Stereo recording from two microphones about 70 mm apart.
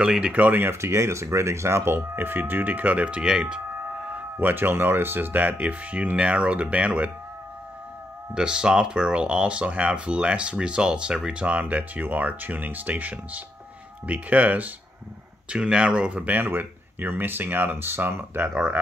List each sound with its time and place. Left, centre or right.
0.0 s speech: centre
8.4 s speech: centre; by 18.5 s right